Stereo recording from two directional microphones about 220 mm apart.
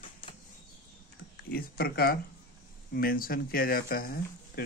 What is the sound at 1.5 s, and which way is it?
Speech, 45° left (ahead or behind).